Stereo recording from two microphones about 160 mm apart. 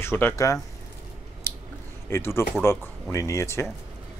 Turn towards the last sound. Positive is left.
turn(degrees=15)  # may be behind; listen again after turning